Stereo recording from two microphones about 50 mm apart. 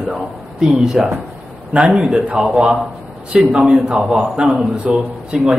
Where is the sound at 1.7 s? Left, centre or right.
Centre.